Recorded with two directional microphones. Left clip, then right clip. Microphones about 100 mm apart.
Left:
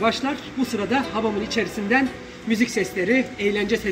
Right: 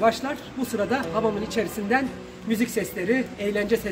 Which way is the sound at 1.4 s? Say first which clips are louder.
Left 2 dB; 65° right (ahead or behind).